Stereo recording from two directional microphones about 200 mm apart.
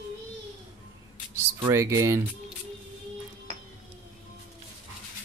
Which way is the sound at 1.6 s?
15° right (ahead or behind).